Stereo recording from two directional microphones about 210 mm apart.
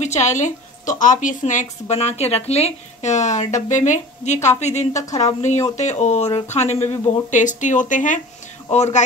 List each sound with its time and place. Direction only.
0.0 s a woman's voice: 35° left (ahead or behind)